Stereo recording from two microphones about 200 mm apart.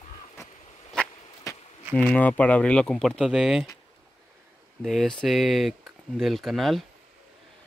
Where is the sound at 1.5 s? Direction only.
15° left (ahead or behind).